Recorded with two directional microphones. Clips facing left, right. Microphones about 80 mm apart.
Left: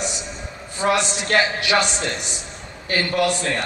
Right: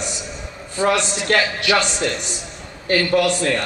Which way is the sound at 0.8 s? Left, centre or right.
Left.